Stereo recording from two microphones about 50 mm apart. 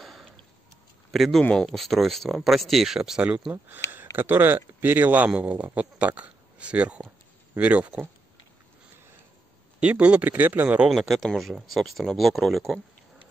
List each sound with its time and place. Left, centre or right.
0.0 s a sound: centre
1.1 s speech: centre
3.2 s speech: right
3.9 s speech: right
9.8 s speech: right
10.2 s speech: right
10.9 s speech: centre